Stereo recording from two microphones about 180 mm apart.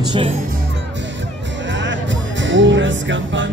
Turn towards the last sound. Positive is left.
turn(degrees=-90)